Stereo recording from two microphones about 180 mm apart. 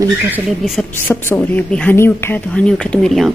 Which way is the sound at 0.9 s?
10° left (ahead or behind).